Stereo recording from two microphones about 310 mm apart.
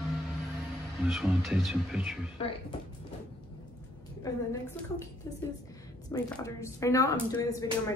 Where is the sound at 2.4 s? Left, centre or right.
Centre.